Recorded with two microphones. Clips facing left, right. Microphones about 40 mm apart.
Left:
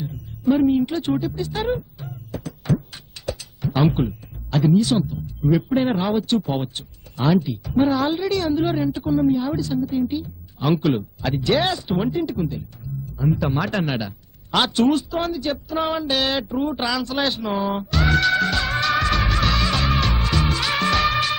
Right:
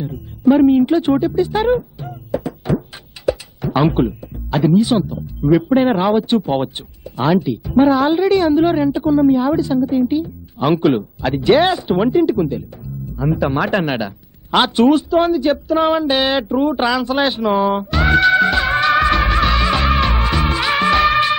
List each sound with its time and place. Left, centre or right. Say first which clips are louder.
0.0 s a woman's voice: right 7 dB; centre
2.0 s music: right 10 dB; right
3.2 s a sound: right 11 dB; centre
3.9 s speech: right 6 dB; centre
5.9 s speech: right 6 dB; centre
16.4 s speech: right 7 dB; centre
16.7 s music: right 7 dB; right